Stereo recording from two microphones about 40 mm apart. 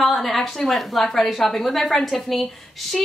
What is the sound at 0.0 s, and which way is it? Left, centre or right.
A woman's voice, centre.